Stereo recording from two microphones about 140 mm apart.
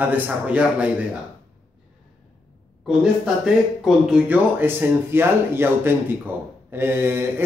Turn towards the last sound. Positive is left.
turn(degrees=-15)  # may be behind; listen again after turning